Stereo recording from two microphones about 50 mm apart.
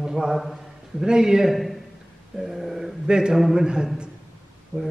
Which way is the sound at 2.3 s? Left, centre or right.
Centre.